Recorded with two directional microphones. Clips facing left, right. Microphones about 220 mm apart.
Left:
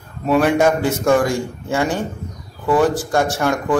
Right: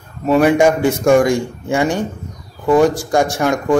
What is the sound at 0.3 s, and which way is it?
Speech, 10° right (ahead or behind).